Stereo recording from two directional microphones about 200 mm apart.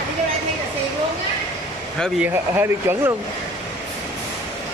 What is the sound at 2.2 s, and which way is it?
Speech, 10° right (ahead or behind).